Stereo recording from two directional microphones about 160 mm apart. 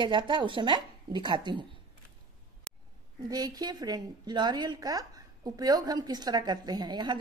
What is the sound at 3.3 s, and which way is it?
A woman's voice, 25° right (ahead or behind).